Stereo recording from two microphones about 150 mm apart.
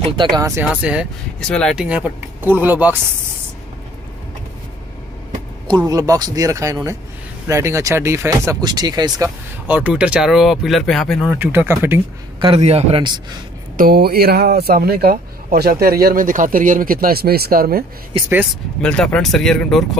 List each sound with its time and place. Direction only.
0.1 s speech: 30° right (ahead or behind)
1.5 s speech: 5° left (ahead or behind)
1.8 s speech: 10° right (ahead or behind)
5.9 s speech: 25° right (ahead or behind)
9.7 s speech: 10° right (ahead or behind)
11.3 s speech: 15° right (ahead or behind)
12.4 s a man's voice: 40° right (ahead or behind)
13.7 s speech: 90° right
18.8 s speech: 5° left (ahead or behind)